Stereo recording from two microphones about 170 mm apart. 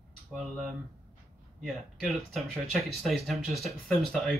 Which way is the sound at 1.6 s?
Centre (ahead or behind).